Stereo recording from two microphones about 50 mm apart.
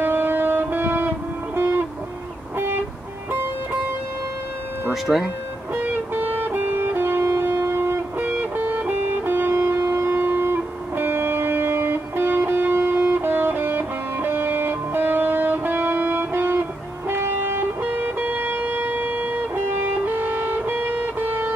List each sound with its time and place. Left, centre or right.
0.0 s music: right
2.5 s vehicle: right
5.0 s speech: centre
5.8 s music: right
8.2 s music: right